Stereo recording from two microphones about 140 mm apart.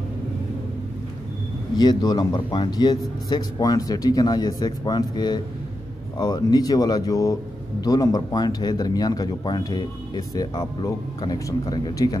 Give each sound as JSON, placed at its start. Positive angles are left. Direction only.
{"t": 1.8, "sound": "speech", "side_deg": 30}